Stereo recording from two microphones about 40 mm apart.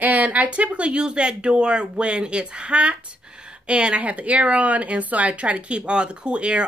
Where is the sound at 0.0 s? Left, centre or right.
Right.